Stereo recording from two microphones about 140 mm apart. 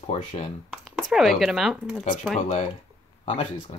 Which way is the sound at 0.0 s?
55° left (ahead or behind).